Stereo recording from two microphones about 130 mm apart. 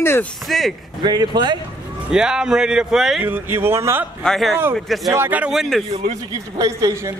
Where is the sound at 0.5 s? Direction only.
Centre (ahead or behind).